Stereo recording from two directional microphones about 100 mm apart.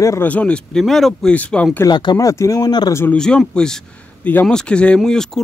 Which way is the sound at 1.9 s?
45° left (ahead or behind).